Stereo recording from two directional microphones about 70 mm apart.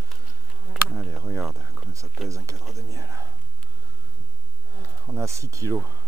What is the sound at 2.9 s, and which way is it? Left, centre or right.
Speech, right.